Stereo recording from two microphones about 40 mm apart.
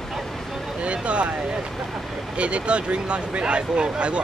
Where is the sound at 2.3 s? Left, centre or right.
Right.